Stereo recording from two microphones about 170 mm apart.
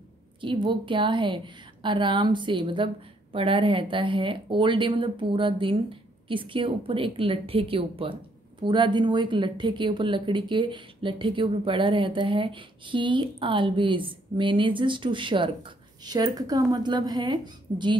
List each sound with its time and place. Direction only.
0.4 s speech: 30° right (ahead or behind)